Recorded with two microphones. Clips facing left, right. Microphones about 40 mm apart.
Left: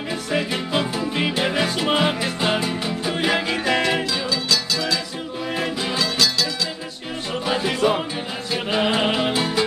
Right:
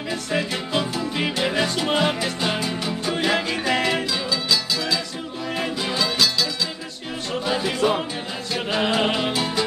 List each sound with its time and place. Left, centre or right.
0.1 s music: centre
7.4 s music: centre